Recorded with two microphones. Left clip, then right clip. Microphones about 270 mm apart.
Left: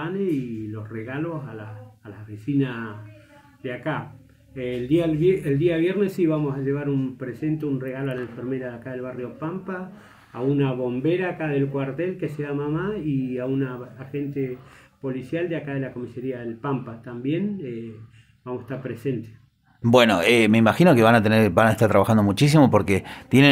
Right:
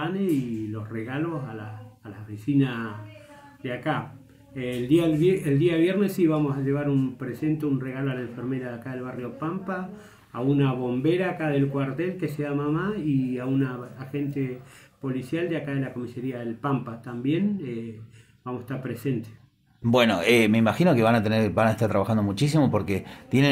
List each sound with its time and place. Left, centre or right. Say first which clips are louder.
0.9 s a man's voice: even; centre
2.6 s a man's voice: even; centre
19.8 s speech: left 5 dB; centre